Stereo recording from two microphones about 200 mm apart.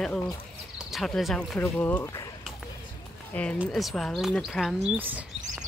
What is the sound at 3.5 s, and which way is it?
Speech, 5° right (ahead or behind).